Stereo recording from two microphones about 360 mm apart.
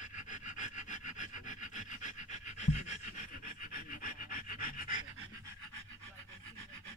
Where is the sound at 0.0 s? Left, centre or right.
Left.